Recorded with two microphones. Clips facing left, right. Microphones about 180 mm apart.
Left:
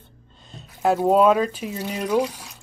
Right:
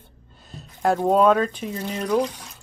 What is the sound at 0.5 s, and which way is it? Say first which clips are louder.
Music: left 1 dB; 5° right (ahead or behind).